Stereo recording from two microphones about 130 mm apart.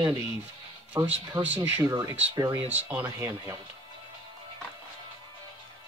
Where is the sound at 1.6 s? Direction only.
30° right (ahead or behind).